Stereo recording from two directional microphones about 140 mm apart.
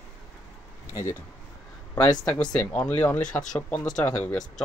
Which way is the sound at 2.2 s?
10° left (ahead or behind).